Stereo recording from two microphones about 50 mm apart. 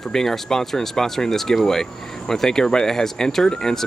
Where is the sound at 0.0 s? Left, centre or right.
Centre.